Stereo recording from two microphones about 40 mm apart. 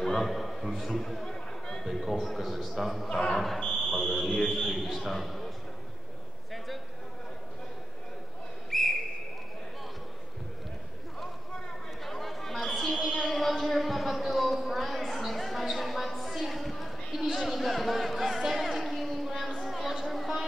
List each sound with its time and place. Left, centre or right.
0.0 s a man's voice: centre
1.2 s chatter: centre
1.9 s a man's voice: centre
3.1 s speech: centre
3.3 s a man's voice: centre
8.6 s a sound: centre
12.0 s chatter: centre
13.2 s a sound: centre